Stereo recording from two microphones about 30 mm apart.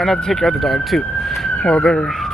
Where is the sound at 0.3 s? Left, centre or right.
Centre.